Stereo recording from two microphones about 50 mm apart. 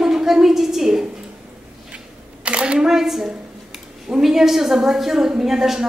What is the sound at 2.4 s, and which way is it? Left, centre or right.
A woman's voice, right.